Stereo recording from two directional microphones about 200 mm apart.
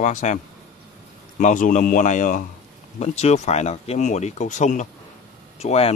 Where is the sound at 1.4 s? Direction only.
40° left (ahead or behind).